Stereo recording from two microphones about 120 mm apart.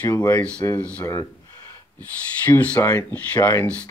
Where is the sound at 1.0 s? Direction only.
25° left (ahead or behind).